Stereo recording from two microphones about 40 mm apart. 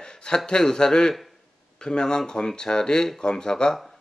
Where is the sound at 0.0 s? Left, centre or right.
Centre.